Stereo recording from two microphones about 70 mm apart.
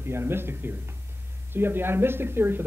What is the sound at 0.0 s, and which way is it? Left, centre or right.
Speech, right.